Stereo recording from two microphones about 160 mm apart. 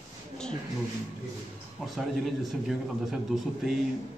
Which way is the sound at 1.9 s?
Centre (ahead or behind).